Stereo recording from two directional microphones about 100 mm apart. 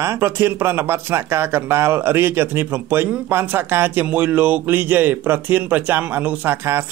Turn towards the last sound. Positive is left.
turn(degrees=-15)  # may be behind; listen again after turning